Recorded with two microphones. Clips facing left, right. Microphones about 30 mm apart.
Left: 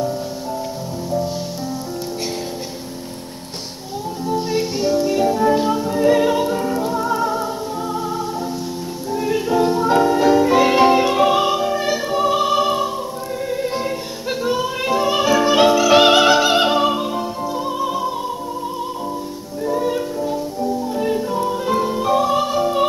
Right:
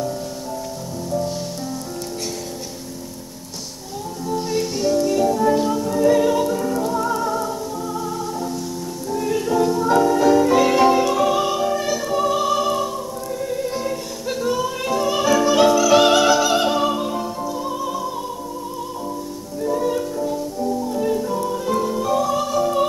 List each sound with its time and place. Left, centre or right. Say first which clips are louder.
4.3 s music: left 2 dB; left
9.1 s music: left 2 dB; left
13.5 s opera: left 3 dB; left
14.4 s music: left 2 dB; left
19.6 s music: left 1 dB; centre